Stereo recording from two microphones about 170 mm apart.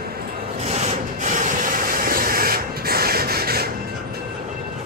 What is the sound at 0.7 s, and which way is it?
Rub, 40° right (ahead or behind).